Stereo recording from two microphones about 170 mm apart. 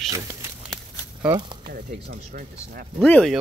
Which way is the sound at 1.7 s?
60° right (ahead or behind).